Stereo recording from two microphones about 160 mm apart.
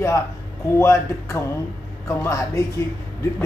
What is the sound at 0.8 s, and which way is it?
A man's voice, 15° left (ahead or behind).